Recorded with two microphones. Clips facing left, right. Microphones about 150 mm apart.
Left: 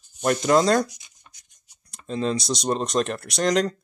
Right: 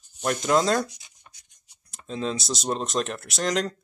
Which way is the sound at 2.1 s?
Centre (ahead or behind).